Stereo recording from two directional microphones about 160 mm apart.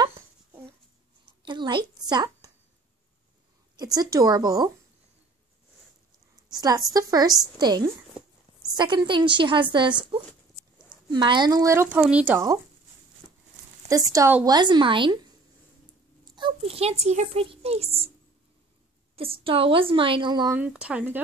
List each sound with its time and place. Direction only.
1.4 s a woman's voice: 30° right (ahead or behind)
3.7 s a woman's voice: 25° right (ahead or behind)
6.9 s a woman's voice: 25° right (ahead or behind)
13.8 s a woman's voice: 20° right (ahead or behind)
16.3 s a child's voice: 35° right (ahead or behind)
19.1 s a child's voice: 35° right (ahead or behind)
20.5 s speech: 10° right (ahead or behind)